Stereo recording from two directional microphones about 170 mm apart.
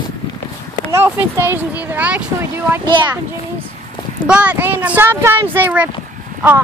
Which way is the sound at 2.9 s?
25° right (ahead or behind).